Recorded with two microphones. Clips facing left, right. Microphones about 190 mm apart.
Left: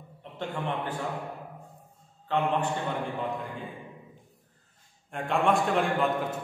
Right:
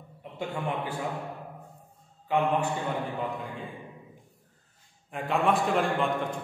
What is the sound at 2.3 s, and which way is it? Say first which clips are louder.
Speech: right 2 dB; 10° right (ahead or behind).